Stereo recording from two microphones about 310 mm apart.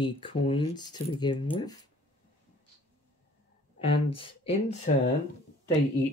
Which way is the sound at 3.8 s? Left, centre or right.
Centre.